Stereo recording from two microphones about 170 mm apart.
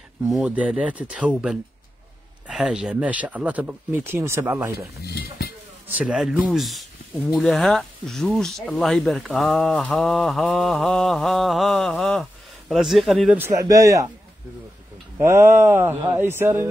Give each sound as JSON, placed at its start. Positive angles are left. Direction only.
{"t": 0.4, "sound": "speech", "side_deg": -5}
{"t": 5.0, "sound": "dishes", "side_deg": 70}
{"t": 5.9, "sound": "speech", "side_deg": -10}
{"t": 13.4, "sound": "speech", "side_deg": -20}
{"t": 15.1, "sound": "speech", "side_deg": -15}